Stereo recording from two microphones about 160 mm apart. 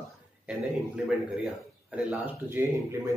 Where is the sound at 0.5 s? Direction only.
5° right (ahead or behind).